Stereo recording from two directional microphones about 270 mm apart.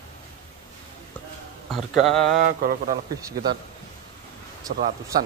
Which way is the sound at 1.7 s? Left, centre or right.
Centre.